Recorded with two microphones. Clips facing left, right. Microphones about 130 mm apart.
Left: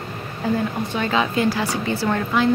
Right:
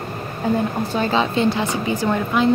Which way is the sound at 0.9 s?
30° right (ahead or behind).